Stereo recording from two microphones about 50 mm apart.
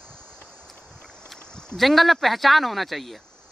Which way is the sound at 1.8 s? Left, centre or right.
Centre.